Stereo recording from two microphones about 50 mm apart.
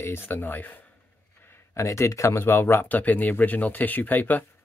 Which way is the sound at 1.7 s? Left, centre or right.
Left.